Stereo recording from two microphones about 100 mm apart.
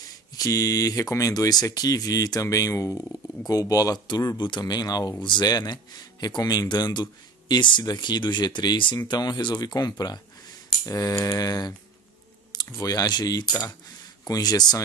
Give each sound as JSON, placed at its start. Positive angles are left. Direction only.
{"t": 0.4, "sound": "speech", "side_deg": 35}
{"t": 4.4, "sound": "speech", "side_deg": 50}